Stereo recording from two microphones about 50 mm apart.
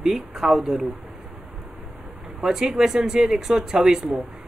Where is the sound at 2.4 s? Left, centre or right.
Centre.